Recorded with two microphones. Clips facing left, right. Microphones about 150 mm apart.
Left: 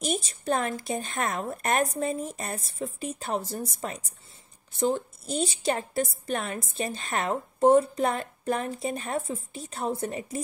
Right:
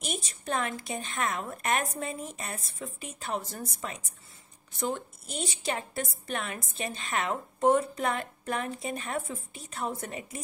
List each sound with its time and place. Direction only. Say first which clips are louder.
0.0 s a woman's voice: left 6 dB; 35° left (ahead or behind)